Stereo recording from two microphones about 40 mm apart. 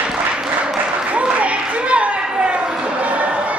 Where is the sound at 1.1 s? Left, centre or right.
Right.